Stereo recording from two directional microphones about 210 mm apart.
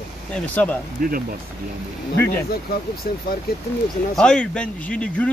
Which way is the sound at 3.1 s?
45° left (ahead or behind).